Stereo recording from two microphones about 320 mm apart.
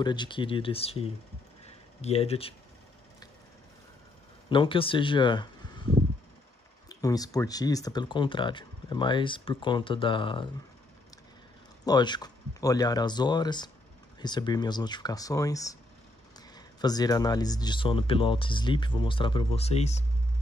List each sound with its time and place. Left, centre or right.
0.0 s speech: centre
4.5 s speech: centre
6.9 s speech: centre
11.8 s speech: centre